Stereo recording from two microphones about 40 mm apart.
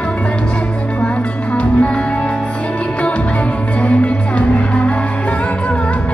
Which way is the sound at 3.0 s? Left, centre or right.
Left.